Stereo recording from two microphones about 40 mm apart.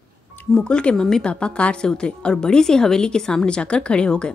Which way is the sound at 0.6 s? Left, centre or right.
Left.